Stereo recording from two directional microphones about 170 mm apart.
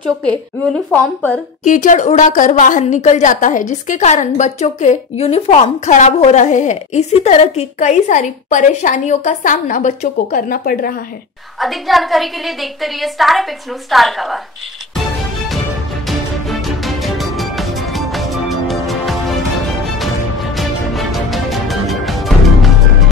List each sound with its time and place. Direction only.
0.9 s speech: 10° left (ahead or behind)
1.6 s a woman's voice: 50° left (ahead or behind)
11.6 s a woman's voice: centre (ahead or behind)
16.1 s music: centre (ahead or behind)
20.5 s music: centre (ahead or behind)